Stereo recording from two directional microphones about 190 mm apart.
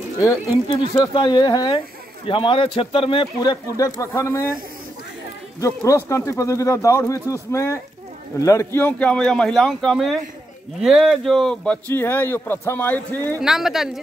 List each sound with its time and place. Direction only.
0.9 s speech: 25° left (ahead or behind)
5.6 s speech: 15° left (ahead or behind)
13.4 s speech: centre (ahead or behind)